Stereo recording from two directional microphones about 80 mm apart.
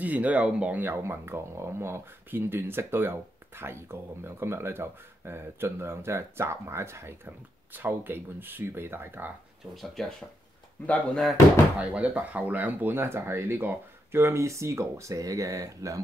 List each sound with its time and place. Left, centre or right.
0.0 s speech: centre
9.8 s speech: centre
10.8 s speech: left
11.8 s speech: centre; by 16.0 s right